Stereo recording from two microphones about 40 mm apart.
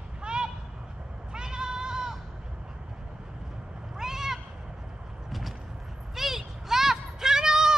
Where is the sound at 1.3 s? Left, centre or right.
Centre.